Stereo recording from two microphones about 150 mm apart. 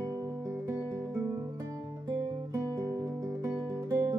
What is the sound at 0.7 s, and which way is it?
Guitar, 20° right (ahead or behind).